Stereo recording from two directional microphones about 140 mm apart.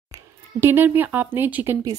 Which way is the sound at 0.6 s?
15° right (ahead or behind).